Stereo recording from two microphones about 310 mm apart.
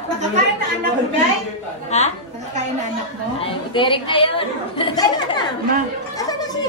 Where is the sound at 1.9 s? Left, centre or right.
Left.